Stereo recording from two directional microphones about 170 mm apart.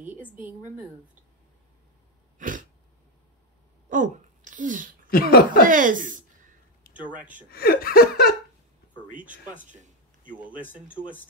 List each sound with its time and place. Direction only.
0.0 s a woman's voice: 10° right (ahead or behind)
2.3 s a sound: 50° right (ahead or behind)
3.9 s speech: 50° right (ahead or behind)
5.1 s laughter: 60° left (ahead or behind)
5.7 s speech: 50° right (ahead or behind)
7.5 s laughter: 65° left (ahead or behind)
10.4 s a woman's voice: 10° right (ahead or behind)